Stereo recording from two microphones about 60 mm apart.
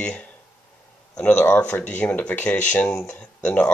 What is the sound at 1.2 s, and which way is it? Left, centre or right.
Speech, left.